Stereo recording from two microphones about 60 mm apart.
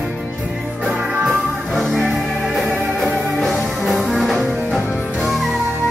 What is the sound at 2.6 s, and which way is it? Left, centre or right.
Music, right.